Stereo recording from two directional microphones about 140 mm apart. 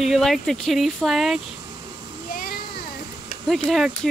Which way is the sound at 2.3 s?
90° left.